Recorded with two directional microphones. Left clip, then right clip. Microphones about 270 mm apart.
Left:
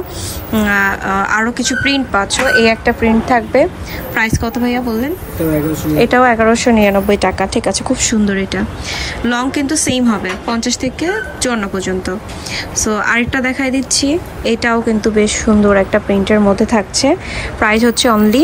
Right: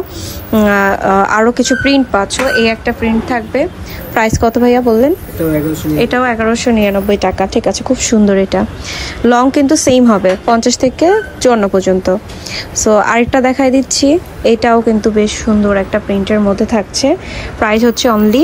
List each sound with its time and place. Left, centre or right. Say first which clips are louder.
0.5 s speech: right 3 dB; right; by 3.6 s centre
4.1 s speech: right 5 dB; right
5.9 s a woman's voice: left 3 dB; centre